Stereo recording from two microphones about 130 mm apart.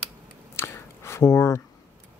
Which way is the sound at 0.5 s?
20° left (ahead or behind).